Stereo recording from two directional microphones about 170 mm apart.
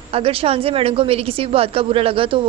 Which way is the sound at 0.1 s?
35° right (ahead or behind).